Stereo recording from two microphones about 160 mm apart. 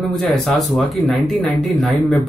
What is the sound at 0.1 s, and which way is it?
Speech, centre (ahead or behind).